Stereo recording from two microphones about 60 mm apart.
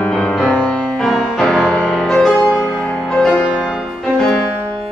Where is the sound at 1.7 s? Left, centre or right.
Centre.